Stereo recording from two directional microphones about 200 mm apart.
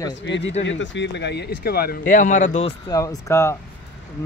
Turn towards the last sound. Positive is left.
turn(degrees=15)  # may be behind; listen again after turning